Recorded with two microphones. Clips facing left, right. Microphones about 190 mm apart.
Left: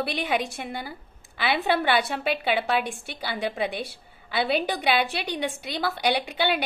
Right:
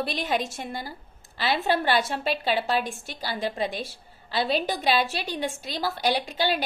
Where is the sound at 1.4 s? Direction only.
60° left (ahead or behind).